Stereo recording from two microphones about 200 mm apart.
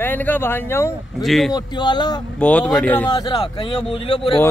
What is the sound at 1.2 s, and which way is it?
Speech, centre (ahead or behind).